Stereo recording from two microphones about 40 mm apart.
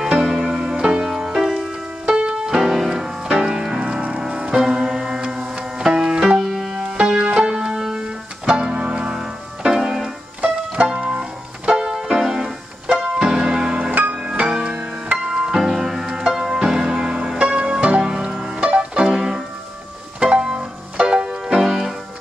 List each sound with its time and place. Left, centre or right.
0.3 s music: centre
2.1 s music: right
2.5 s music: centre; by 9.1 s right
9.1 s music: centre
10.4 s music: right
10.9 s music: right
11.9 s music: centre
14.0 s music: right
14.5 s music: right
15.2 s music: centre
19.0 s music: centre
20.2 s music: right